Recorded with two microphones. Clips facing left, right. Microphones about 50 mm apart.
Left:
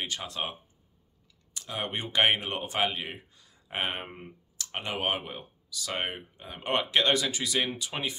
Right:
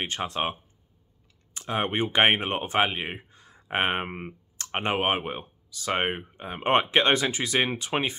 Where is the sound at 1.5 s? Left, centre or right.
Right.